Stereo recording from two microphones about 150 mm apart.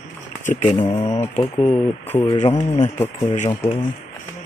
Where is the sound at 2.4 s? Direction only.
50° left (ahead or behind).